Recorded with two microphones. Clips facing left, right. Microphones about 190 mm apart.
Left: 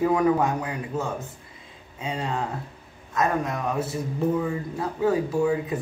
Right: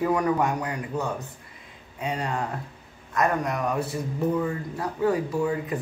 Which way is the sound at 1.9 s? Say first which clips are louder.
Even; 25° left (ahead or behind).